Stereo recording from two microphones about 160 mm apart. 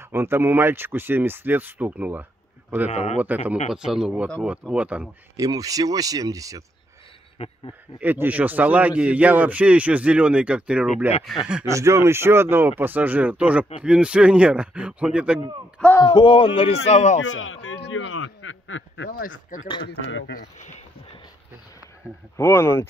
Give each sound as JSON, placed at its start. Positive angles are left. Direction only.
{"t": 0.0, "sound": "a man's voice", "side_deg": -15}
{"t": 2.9, "sound": "speech", "side_deg": 40}
{"t": 3.7, "sound": "a man's voice", "side_deg": -5}
{"t": 5.4, "sound": "speech", "side_deg": -20}
{"t": 7.3, "sound": "speech", "side_deg": 35}
{"t": 8.0, "sound": "a man's voice", "side_deg": -10}
{"t": 11.6, "sound": "a man's voice", "side_deg": -20}
{"t": 16.0, "sound": "speech", "side_deg": 30}
{"t": 19.0, "sound": "speech", "side_deg": 60}
{"t": 19.8, "sound": "speech", "side_deg": 90}
{"t": 20.5, "sound": "speech", "side_deg": 45}
{"t": 22.0, "sound": "a man's voice", "side_deg": -10}
{"t": 22.4, "sound": "speech", "side_deg": 15}